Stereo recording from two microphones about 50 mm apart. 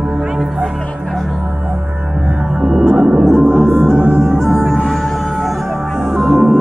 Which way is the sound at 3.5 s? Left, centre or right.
Left.